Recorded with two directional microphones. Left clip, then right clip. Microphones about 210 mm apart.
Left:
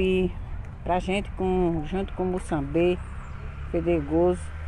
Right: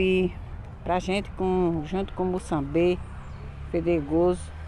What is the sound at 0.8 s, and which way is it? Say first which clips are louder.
Speech: even; centre (ahead or behind).